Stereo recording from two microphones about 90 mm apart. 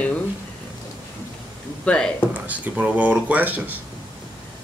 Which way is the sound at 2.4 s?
15° right (ahead or behind).